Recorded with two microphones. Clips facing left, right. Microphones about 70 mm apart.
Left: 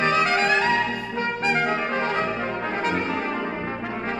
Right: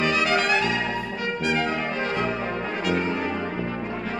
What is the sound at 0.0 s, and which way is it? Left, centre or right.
Music, left.